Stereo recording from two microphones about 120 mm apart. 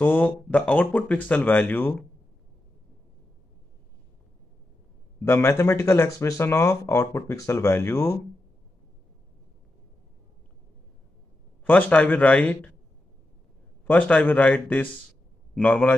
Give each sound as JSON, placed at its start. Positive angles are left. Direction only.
{"t": 0.0, "sound": "speech", "side_deg": 15}
{"t": 5.2, "sound": "speech", "side_deg": 20}
{"t": 11.6, "sound": "speech", "side_deg": 15}
{"t": 13.8, "sound": "speech", "side_deg": 10}